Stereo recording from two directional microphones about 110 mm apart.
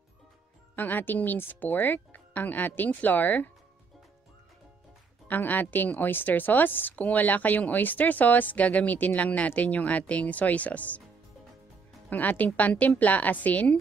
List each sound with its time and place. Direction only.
0.7 s a woman's voice: 15° left (ahead or behind)
5.3 s a woman's voice: 15° left (ahead or behind)
12.1 s a woman's voice: 15° left (ahead or behind)